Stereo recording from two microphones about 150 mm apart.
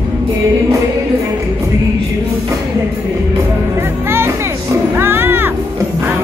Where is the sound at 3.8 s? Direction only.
15° right (ahead or behind).